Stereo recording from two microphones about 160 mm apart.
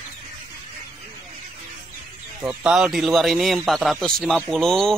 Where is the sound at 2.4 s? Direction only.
5° right (ahead or behind).